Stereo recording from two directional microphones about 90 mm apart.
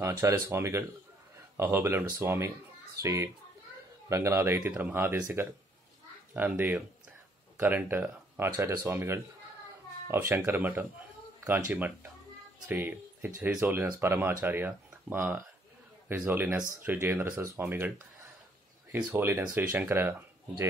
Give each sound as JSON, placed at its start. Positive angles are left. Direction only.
{"t": 0.0, "sound": "speech", "side_deg": -35}